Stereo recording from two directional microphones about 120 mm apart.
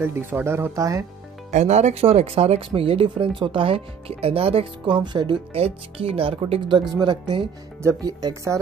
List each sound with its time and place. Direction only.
0.0 s speech: 20° right (ahead or behind)
1.5 s speech: 70° right (ahead or behind); by 5.4 s 40° right (ahead or behind)
5.5 s speech: 55° right (ahead or behind)
7.8 s speech: 30° right (ahead or behind)